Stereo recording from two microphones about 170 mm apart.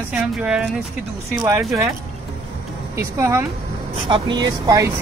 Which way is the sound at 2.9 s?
15° right (ahead or behind).